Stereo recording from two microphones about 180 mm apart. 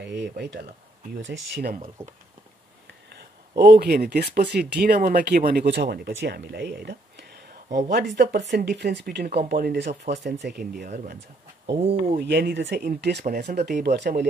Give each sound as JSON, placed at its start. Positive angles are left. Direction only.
{"t": 0.0, "sound": "speech", "side_deg": -70}
{"t": 3.1, "sound": "speech", "side_deg": -65}
{"t": 10.1, "sound": "speech", "side_deg": -40}
{"t": 10.4, "sound": "speech", "side_deg": -55}
{"t": 11.6, "sound": "speech", "side_deg": -35}
{"t": 12.2, "sound": "speech", "side_deg": -65}
{"t": 13.2, "sound": "speech", "side_deg": -55}